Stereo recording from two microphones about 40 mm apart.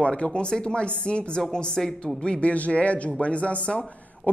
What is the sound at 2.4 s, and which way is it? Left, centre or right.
Speech, left.